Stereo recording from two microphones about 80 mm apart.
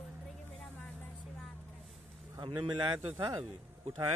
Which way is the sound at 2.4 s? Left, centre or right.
Right.